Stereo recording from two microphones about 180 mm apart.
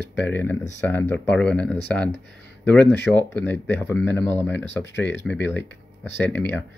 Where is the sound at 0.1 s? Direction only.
10° left (ahead or behind).